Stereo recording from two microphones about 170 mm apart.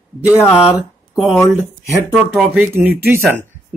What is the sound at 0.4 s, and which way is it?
Speech, 15° left (ahead or behind).